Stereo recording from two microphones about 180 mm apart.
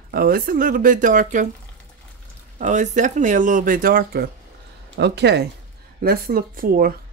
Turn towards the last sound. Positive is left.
turn(degrees=-55)  # may be behind; listen again after turning